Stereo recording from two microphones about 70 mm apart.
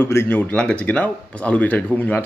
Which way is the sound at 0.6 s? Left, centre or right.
Centre.